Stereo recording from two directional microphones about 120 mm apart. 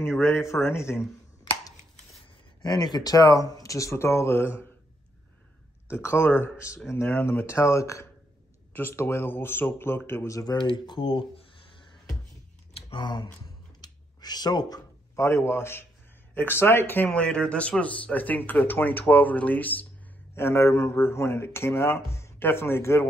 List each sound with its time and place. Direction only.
0.0 s speech: 20° left (ahead or behind)
2.6 s speech: 35° left (ahead or behind)
5.9 s speech: 20° left (ahead or behind)
10.7 s speech: 45° left (ahead or behind)
13.7 s a sound: 35° left (ahead or behind)
16.3 s speech: 20° left (ahead or behind)